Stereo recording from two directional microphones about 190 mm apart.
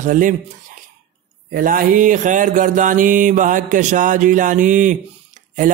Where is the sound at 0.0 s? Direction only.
45° right (ahead or behind).